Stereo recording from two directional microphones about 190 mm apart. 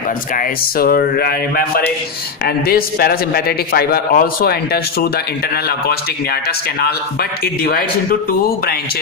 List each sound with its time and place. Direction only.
0.4 s a man's voice: 50° left (ahead or behind)
2.4 s a man's voice: 50° left (ahead or behind)